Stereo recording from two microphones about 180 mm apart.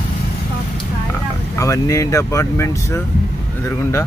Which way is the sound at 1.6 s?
20° left (ahead or behind).